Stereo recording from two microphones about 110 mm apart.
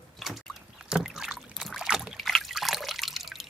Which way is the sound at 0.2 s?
Centre (ahead or behind).